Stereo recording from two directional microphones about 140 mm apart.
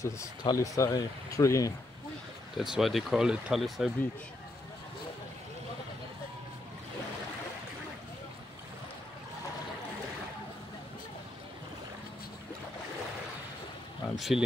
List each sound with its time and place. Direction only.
0.0 s speech: 25° left (ahead or behind)
2.5 s speech: centre (ahead or behind)
14.1 s speech: centre (ahead or behind)